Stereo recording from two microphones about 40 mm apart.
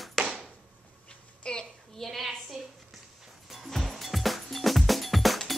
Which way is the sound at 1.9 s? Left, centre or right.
Centre.